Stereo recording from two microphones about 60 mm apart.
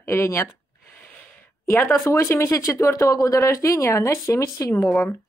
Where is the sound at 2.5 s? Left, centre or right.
Left.